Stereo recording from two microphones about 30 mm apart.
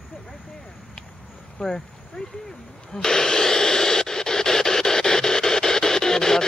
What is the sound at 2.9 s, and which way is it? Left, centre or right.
Radio, centre.